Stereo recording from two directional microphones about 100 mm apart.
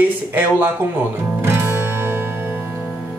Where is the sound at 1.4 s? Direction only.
25° right (ahead or behind).